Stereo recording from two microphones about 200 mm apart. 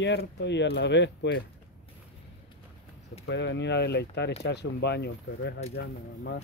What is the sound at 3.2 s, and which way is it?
Speech, 60° left (ahead or behind).